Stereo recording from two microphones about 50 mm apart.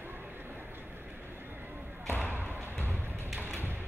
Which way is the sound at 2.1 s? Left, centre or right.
Right.